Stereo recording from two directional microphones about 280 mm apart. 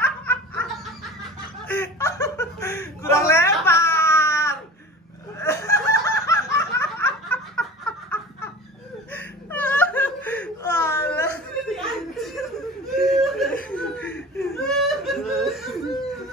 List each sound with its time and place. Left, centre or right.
0.0 s laughter: centre
1.7 s snicker: centre
5.4 s laughter: centre
9.1 s whimper: centre
11.7 s chuckle: centre
12.9 s whimper: centre